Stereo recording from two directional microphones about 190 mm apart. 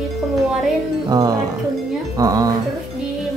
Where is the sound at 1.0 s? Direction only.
20° right (ahead or behind).